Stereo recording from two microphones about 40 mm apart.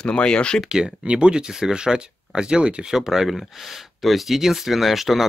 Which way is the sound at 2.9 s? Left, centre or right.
Centre.